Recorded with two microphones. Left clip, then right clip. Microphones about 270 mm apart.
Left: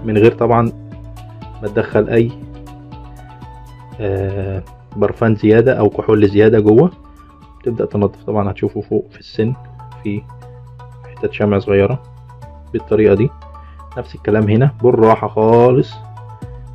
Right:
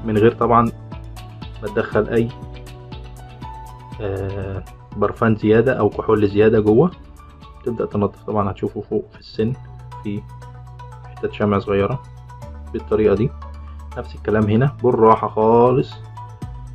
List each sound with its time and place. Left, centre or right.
0.0 s speech: centre
4.0 s speech: left